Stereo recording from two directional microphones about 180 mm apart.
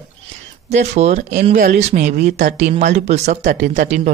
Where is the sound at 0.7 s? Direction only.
40° right (ahead or behind).